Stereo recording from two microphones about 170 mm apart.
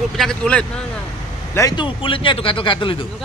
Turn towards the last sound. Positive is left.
turn(degrees=30)  # may be behind; listen again after turning